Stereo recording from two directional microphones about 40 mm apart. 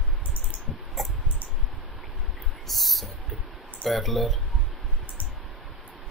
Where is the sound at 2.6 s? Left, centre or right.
Centre.